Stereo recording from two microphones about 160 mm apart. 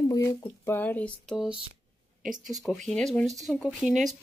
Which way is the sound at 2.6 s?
5° left (ahead or behind).